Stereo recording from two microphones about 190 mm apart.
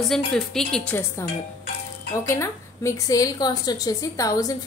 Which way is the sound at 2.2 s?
15° left (ahead or behind).